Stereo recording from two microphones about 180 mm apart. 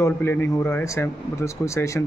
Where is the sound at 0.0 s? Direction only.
15° left (ahead or behind).